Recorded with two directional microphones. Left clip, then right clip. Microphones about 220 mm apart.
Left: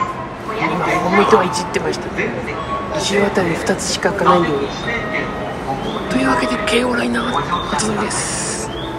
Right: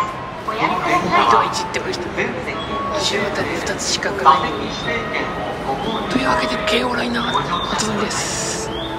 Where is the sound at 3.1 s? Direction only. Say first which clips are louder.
Left 4 dB; 10° left (ahead or behind).